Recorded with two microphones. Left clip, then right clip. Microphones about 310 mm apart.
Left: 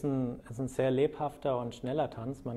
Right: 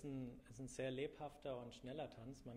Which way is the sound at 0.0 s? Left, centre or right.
Left.